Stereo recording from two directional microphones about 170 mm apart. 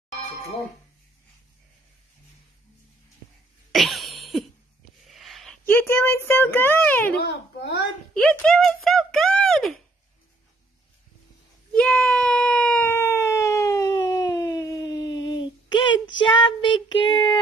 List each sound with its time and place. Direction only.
3.7 s cough: centre (ahead or behind)
5.0 s a sound: centre (ahead or behind)
5.7 s speech: 15° left (ahead or behind)
7.2 s a child's voice: 80° left
8.1 s speech: 5° left (ahead or behind)
11.7 s a sound: 5° left (ahead or behind); by 16.3 s 30° left (ahead or behind)
16.7 s child singing: 30° left (ahead or behind)